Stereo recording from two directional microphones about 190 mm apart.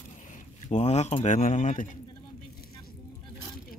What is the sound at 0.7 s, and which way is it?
Speech, 35° left (ahead or behind).